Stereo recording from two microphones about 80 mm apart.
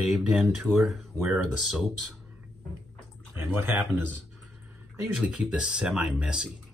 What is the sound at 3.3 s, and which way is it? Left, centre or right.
Speech, right.